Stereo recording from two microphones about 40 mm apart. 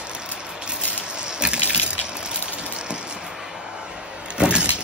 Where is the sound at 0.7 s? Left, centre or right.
Right.